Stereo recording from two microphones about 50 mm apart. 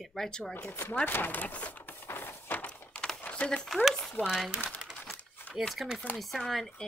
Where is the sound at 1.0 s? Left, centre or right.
Left.